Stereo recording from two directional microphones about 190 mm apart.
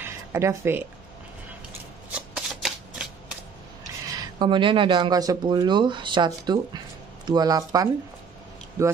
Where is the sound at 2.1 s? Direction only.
5° right (ahead or behind).